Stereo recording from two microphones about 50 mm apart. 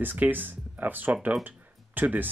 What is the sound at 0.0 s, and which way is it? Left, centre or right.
Speech, right.